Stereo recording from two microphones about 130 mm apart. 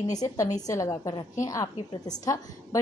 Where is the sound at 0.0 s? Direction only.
30° left (ahead or behind).